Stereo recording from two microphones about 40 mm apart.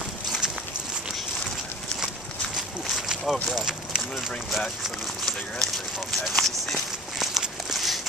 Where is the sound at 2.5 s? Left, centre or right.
Centre.